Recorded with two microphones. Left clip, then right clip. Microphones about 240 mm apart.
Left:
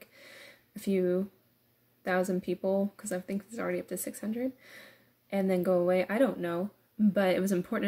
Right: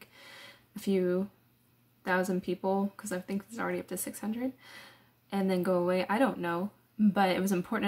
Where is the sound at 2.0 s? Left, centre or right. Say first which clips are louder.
Even; centre.